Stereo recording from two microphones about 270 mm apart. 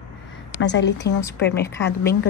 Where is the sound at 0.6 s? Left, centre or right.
Left.